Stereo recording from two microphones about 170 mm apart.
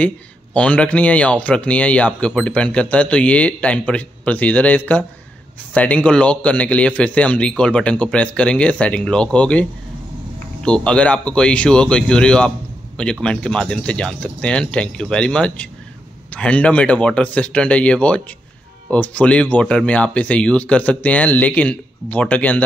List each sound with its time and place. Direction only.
0.6 s speech: 5° left (ahead or behind)